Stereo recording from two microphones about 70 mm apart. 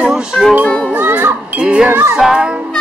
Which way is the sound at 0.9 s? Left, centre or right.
Right.